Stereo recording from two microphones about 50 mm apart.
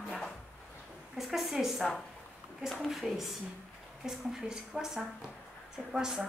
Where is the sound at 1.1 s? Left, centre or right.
Centre.